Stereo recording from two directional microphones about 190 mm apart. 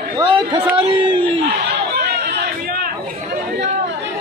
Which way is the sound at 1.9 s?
60° right (ahead or behind).